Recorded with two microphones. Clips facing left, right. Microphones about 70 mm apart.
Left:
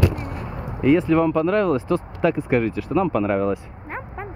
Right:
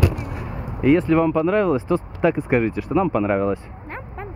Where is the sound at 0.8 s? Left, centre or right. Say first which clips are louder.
Right 1 dB; centre.